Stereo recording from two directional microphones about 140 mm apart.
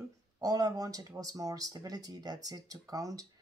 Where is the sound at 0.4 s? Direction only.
25° right (ahead or behind).